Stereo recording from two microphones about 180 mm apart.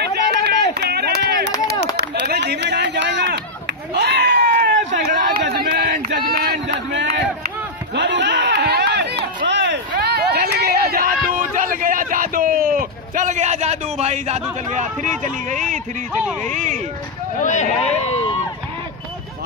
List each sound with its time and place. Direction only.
0.0 s run: 65° right (ahead or behind)
9.5 s a sound: 75° right (ahead or behind); by 14.4 s 35° right (ahead or behind)
15.0 s speech: 45° right (ahead or behind)
17.4 s speech: 40° left (ahead or behind)